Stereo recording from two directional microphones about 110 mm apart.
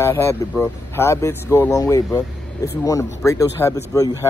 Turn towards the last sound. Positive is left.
turn(degrees=30)  # may be behind; listen again after turning